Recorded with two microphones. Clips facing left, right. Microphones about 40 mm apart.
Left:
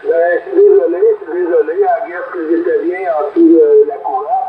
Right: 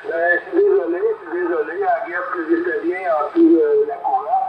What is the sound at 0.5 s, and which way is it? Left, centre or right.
Radio, centre.